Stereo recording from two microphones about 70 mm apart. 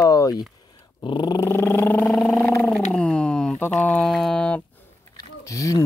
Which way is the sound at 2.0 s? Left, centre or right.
Centre.